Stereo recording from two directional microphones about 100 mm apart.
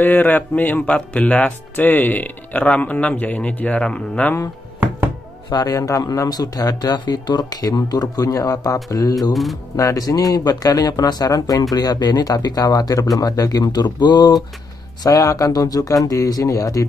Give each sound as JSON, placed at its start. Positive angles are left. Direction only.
{"t": 0.0, "sound": "speech", "side_deg": 20}
{"t": 5.5, "sound": "speech", "side_deg": 40}
{"t": 9.3, "sound": "speech", "side_deg": 0}
{"t": 9.8, "sound": "speech", "side_deg": 35}
{"t": 15.0, "sound": "speech", "side_deg": 35}